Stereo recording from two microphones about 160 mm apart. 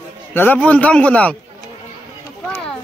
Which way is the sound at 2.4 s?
5° left (ahead or behind).